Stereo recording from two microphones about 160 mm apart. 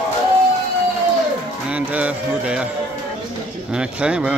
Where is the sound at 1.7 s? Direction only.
10° right (ahead or behind).